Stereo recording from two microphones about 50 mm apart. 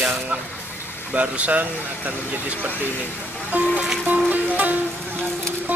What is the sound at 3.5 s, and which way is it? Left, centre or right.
Speech, right.